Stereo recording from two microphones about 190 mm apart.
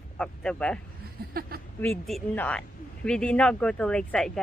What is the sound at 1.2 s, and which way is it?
Speech, 50° right (ahead or behind).